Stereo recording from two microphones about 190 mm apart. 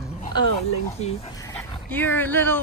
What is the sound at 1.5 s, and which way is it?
Speech, 10° left (ahead or behind).